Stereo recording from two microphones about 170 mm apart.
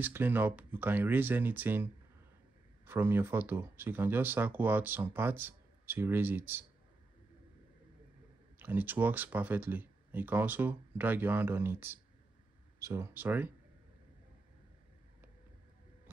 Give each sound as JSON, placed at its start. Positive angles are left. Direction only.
{"t": 0.0, "sound": "speech", "side_deg": -10}
{"t": 2.9, "sound": "speech", "side_deg": -15}
{"t": 8.5, "sound": "speech", "side_deg": -10}